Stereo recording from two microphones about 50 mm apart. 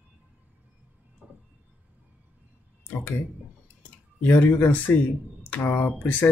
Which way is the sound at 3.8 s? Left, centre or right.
Left.